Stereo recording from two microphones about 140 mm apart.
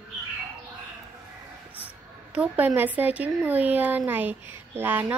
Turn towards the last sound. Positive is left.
turn(degrees=-15)  # may be behind; listen again after turning